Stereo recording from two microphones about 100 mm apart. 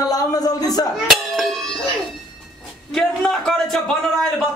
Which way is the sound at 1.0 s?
5° left (ahead or behind).